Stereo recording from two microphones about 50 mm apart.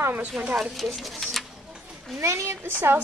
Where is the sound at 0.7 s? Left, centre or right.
Centre.